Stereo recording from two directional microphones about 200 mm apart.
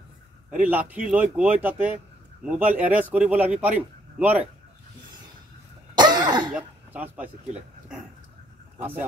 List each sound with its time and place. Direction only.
0.5 s a man's voice: 10° right (ahead or behind)
5.9 s cough: 20° right (ahead or behind)
6.5 s speech: 10° right (ahead or behind)